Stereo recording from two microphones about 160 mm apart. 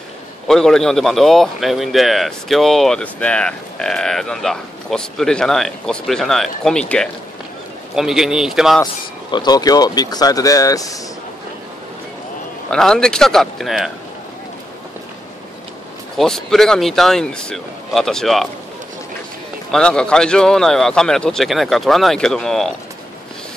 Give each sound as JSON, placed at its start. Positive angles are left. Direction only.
{"t": 0.5, "sound": "a man's voice", "side_deg": 5}
{"t": 9.3, "sound": "speech", "side_deg": 25}
{"t": 12.6, "sound": "a man's voice", "side_deg": 5}
{"t": 16.2, "sound": "a man's voice", "side_deg": 5}
{"t": 19.7, "sound": "a man's voice", "side_deg": 5}